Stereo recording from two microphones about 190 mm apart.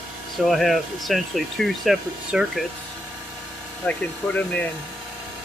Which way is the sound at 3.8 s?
5° left (ahead or behind).